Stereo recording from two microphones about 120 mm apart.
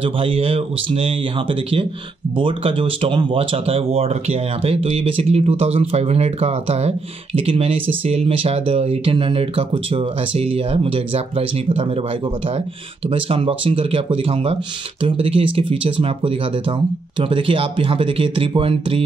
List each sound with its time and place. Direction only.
0.0 s speech: 50° right (ahead or behind)
13.1 s speech: 50° right (ahead or behind)